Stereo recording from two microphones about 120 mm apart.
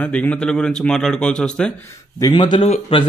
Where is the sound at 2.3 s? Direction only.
45° left (ahead or behind).